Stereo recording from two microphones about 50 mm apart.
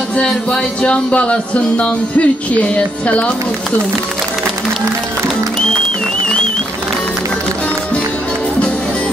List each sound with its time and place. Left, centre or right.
0.2 s speech: centre
0.8 s speech: left